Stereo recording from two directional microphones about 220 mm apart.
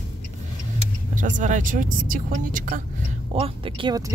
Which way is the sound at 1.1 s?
35° right (ahead or behind).